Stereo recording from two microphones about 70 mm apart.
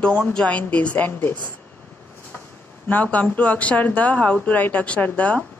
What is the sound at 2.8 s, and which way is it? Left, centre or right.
Speech, left.